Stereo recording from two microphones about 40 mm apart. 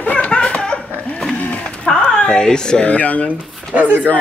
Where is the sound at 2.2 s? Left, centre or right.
Centre.